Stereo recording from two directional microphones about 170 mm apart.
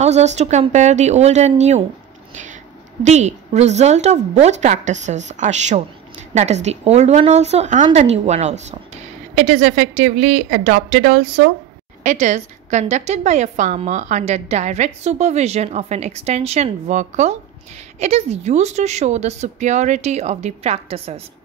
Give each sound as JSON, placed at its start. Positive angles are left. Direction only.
{"t": 0.0, "sound": "a woman's voice", "side_deg": -40}
{"t": 3.0, "sound": "a woman's voice", "side_deg": -45}